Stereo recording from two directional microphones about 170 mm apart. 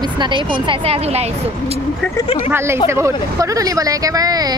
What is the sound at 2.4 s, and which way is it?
Speech, 15° right (ahead or behind).